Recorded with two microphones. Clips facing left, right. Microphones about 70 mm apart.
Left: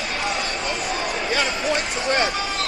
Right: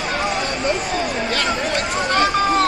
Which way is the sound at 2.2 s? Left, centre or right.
Right.